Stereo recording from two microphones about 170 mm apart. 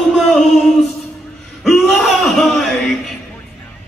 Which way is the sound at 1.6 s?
Centre (ahead or behind).